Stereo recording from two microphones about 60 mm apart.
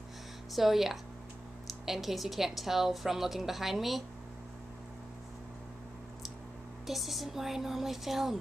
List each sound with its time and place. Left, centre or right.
0.5 s a woman's voice: centre
6.9 s a woman's voice: centre